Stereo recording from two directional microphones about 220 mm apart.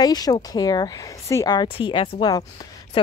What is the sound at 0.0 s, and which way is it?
Speech, 15° left (ahead or behind).